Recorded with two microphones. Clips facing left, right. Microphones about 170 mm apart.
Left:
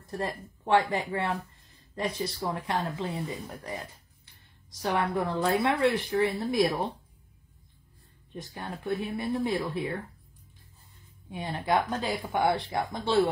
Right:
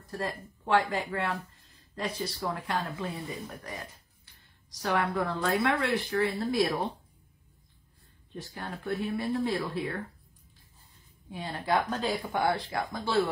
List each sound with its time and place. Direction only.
0.2 s speech: 25° left (ahead or behind)
4.8 s speech: 20° left (ahead or behind)
8.6 s speech: 20° left (ahead or behind)
11.2 s speech: 20° left (ahead or behind)